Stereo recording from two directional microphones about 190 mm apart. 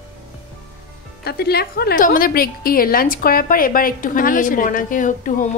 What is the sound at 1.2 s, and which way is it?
A woman's voice, 55° left (ahead or behind).